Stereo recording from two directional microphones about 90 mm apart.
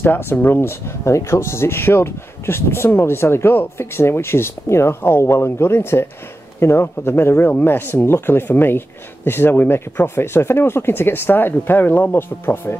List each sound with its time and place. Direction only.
0.0 s speech: 25° left (ahead or behind)